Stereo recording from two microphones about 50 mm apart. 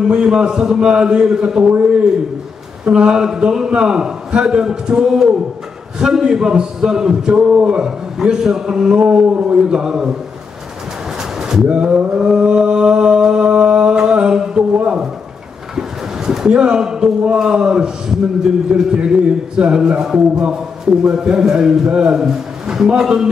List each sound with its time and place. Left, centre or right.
0.0 s a man's voice: centre
2.8 s a man's voice: centre
11.7 s a sound: right
14.7 s a sound: right
16.3 s a man's voice: centre
22.1 s a man's voice: centre